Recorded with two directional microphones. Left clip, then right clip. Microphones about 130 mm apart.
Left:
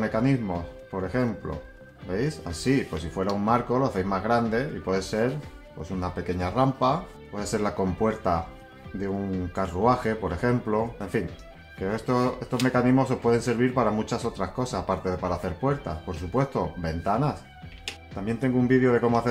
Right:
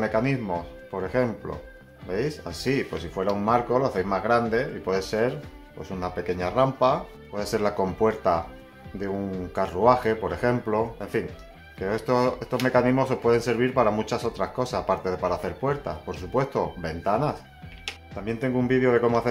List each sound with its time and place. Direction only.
0.0 s speech: 35° right (ahead or behind)
9.6 s speech: 40° right (ahead or behind)